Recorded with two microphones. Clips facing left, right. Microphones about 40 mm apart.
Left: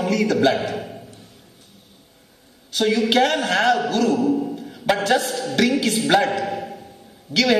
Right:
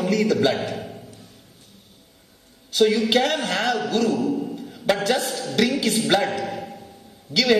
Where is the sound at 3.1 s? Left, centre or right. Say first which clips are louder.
Left 3 dB; left.